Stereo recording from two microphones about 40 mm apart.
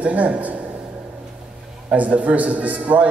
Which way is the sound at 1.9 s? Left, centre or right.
Right.